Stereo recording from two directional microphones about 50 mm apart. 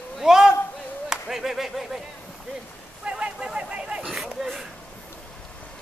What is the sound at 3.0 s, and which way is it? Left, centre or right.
Speech, centre.